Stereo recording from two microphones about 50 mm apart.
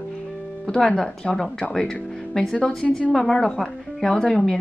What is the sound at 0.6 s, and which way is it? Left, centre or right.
A woman's voice, centre.